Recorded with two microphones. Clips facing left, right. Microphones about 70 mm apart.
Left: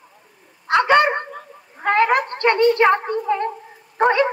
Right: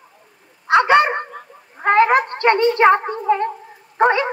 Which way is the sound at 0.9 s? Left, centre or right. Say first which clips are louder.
Right 1 dB; centre.